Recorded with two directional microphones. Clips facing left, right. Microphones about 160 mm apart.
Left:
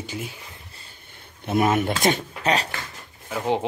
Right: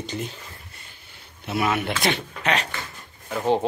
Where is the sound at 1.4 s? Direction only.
45° left (ahead or behind).